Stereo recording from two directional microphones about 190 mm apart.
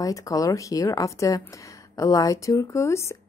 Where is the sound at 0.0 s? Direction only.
15° left (ahead or behind).